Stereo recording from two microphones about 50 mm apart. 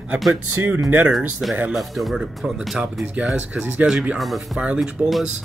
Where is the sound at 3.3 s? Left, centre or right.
Right.